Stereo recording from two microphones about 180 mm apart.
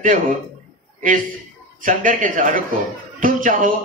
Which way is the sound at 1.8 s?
50° right (ahead or behind).